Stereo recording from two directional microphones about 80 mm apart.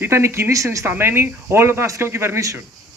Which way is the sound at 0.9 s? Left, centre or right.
Right.